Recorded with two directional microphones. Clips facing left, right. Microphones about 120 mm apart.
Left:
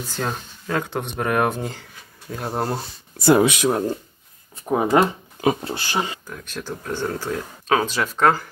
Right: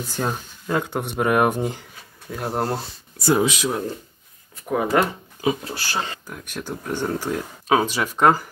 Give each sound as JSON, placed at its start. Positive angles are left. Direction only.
{"t": 0.1, "sound": "speech", "side_deg": -10}
{"t": 2.3, "sound": "speech", "side_deg": 0}
{"t": 3.2, "sound": "speech", "side_deg": 60}
{"t": 4.6, "sound": "speech", "side_deg": 25}
{"t": 6.2, "sound": "speech", "side_deg": -15}